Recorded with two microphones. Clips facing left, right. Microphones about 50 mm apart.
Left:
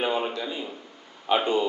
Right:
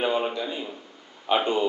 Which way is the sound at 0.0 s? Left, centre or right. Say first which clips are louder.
Right 1 dB; centre.